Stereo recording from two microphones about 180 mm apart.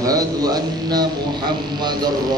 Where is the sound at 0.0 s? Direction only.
20° right (ahead or behind).